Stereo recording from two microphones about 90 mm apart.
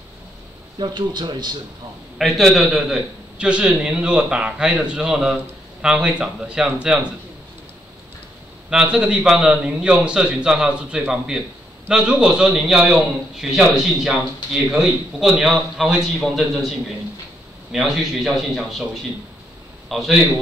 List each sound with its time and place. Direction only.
0.7 s speech: 55° right (ahead or behind)
2.1 s a man's voice: centre (ahead or behind)
8.6 s a man's voice: 10° right (ahead or behind)
17.7 s a man's voice: centre (ahead or behind)
19.9 s a man's voice: centre (ahead or behind)